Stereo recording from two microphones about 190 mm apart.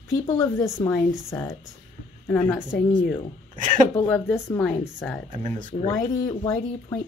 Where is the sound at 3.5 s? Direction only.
45° right (ahead or behind).